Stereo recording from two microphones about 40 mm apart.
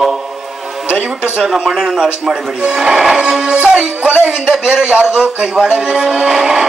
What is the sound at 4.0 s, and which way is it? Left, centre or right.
Speech, right.